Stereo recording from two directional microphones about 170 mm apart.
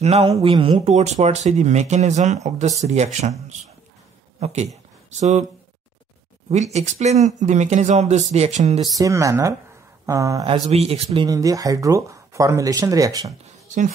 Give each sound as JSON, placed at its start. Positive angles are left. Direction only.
{"t": 0.0, "sound": "speech", "side_deg": -35}
{"t": 6.5, "sound": "speech", "side_deg": -45}
{"t": 8.9, "sound": "speech", "side_deg": -20}
{"t": 10.4, "sound": "speech", "side_deg": -35}
{"t": 11.1, "sound": "speech", "side_deg": -20}
{"t": 13.5, "sound": "music", "side_deg": -45}